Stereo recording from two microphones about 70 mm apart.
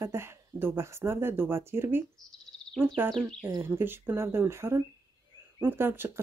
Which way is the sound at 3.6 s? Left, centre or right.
Right.